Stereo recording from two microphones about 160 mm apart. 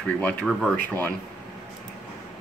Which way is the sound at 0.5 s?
5° right (ahead or behind).